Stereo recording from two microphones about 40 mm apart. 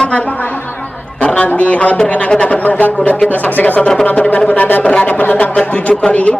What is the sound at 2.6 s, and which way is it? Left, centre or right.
Speech, left.